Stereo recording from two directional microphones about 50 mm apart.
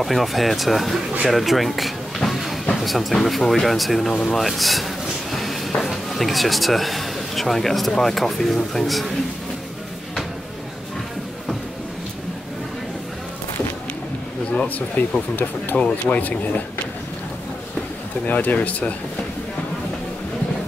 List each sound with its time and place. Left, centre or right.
0.0 s speech: centre
1.2 s a sound: centre
2.7 s speech: centre
15.0 s speech: left
15.7 s speech: centre
16.1 s speech: left
18.2 s speech: left